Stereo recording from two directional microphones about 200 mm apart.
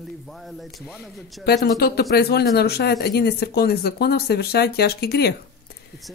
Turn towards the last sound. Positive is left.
turn(degrees=55)  # may be behind; listen again after turning